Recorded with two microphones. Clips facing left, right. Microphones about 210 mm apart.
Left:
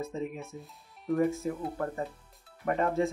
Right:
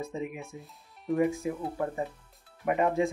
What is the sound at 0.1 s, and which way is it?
Speech, 10° right (ahead or behind).